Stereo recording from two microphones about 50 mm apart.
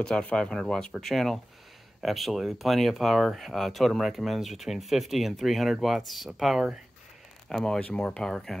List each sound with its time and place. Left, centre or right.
0.2 s speech: centre
7.4 s speech: centre